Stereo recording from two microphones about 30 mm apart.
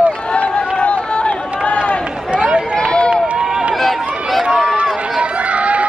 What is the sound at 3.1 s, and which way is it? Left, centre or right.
Run, right.